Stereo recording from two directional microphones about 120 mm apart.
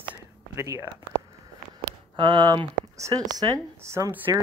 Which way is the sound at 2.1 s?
40° right (ahead or behind).